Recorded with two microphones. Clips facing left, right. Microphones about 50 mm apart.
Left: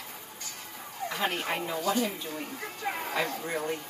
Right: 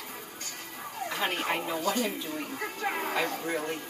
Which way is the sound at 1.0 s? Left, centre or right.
Centre.